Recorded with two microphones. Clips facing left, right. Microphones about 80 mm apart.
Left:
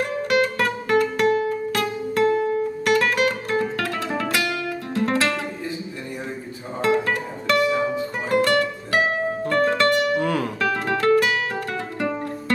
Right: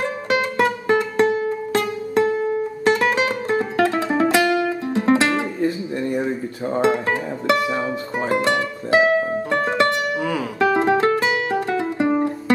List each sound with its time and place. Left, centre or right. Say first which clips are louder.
0.0 s music: left 1 dB; right
6.8 s music: right 1 dB; right
10.1 s music: left 1 dB; centre
10.6 s music: right 8 dB; right